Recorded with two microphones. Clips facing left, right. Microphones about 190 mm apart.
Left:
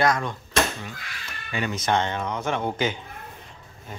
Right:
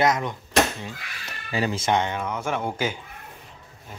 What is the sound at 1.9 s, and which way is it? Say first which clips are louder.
Speech: left 2 dB; 10° right (ahead or behind).